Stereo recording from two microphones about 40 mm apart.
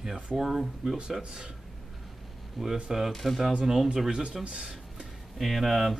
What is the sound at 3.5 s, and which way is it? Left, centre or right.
Speech, centre.